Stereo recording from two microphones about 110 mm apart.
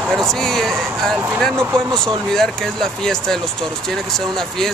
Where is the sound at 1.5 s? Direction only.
25° right (ahead or behind).